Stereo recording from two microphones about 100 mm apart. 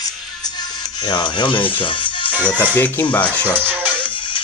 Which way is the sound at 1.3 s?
55° left (ahead or behind).